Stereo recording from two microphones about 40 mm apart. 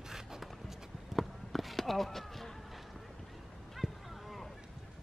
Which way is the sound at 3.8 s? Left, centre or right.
Centre.